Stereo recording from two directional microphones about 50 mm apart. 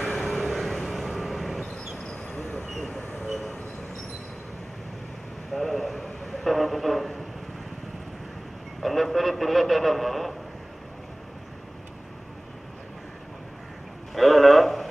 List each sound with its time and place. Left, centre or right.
0.2 s vehicle: centre
2.0 s vehicle: centre
2.7 s vehicle: centre
5.5 s a sound: centre
8.8 s a man's voice: centre
14.1 s a sound: centre